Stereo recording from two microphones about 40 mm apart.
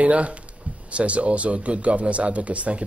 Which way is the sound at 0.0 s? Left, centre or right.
Right.